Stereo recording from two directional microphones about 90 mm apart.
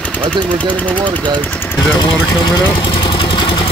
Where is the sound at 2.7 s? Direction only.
65° left (ahead or behind).